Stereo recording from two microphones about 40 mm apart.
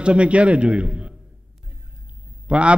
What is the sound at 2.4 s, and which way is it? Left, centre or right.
Speech, right.